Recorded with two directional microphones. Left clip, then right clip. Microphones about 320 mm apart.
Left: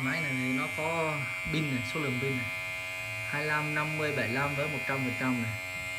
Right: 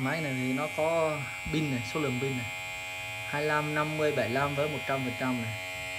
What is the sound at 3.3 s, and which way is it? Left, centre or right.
Speech, centre.